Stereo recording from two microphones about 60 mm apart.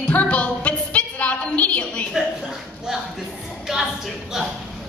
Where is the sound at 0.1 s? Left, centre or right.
Left.